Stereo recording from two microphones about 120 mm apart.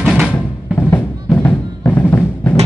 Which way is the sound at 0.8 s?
20° left (ahead or behind).